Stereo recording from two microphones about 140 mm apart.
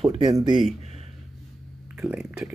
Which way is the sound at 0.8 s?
50° right (ahead or behind).